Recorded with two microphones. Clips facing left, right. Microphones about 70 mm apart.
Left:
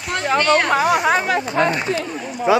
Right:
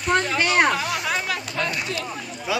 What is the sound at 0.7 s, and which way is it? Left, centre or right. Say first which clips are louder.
Speech: left 9 dB; left.